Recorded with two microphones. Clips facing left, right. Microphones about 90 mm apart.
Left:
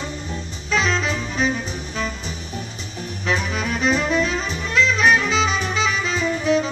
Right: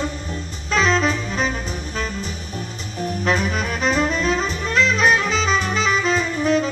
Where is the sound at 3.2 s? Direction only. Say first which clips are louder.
Right 1 dB; 45° right (ahead or behind).